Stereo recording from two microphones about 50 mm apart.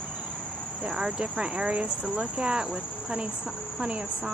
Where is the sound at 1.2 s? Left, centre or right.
Right.